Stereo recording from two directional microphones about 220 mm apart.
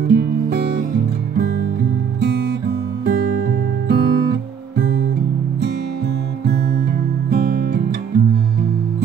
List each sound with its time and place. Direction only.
0.1 s music: 50° right (ahead or behind)
3.1 s music: 45° right (ahead or behind)
7.2 s music: 45° right (ahead or behind)